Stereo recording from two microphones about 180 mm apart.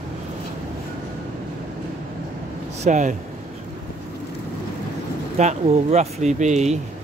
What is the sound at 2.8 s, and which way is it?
Speech, 45° right (ahead or behind).